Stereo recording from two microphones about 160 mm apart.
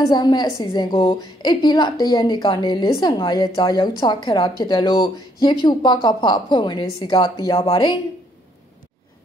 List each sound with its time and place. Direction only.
0.1 s a woman's voice: 25° left (ahead or behind)